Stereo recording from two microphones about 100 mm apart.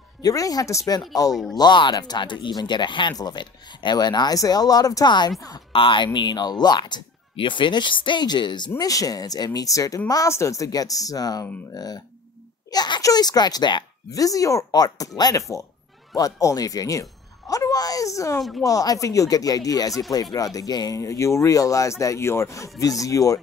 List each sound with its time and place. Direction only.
0.2 s speech: 35° left (ahead or behind)
1.3 s speech: centre (ahead or behind)
1.6 s speech: 50° left (ahead or behind)
5.7 s speech: 55° left (ahead or behind)
6.1 s speech: 45° left (ahead or behind)
14.1 s speech: 35° left (ahead or behind)